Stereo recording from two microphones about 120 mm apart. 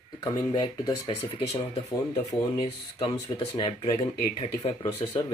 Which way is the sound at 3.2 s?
40° left (ahead or behind).